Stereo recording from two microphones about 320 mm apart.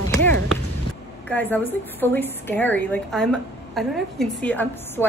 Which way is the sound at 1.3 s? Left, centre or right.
Centre.